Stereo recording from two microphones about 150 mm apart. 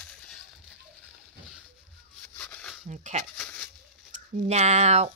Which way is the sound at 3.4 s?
10° left (ahead or behind).